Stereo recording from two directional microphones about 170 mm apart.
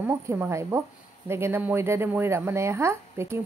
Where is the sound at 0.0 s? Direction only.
15° right (ahead or behind).